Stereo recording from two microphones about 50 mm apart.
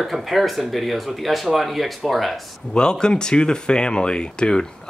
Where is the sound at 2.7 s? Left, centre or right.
Centre.